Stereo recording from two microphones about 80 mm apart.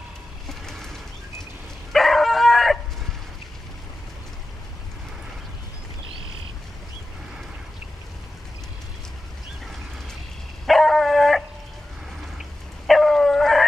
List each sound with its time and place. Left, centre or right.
0.5 s a sound: centre
1.9 s dog: centre
10.7 s dog: centre